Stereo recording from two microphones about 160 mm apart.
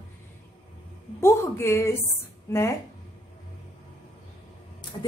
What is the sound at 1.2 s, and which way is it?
Speech, 15° left (ahead or behind).